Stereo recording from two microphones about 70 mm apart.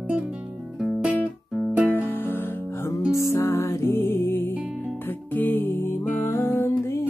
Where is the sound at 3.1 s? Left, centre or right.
Left.